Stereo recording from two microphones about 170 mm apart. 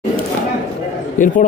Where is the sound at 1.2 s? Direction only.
50° left (ahead or behind).